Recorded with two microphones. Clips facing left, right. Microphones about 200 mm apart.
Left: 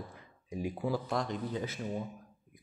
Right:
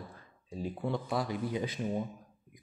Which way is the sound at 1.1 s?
5° right (ahead or behind).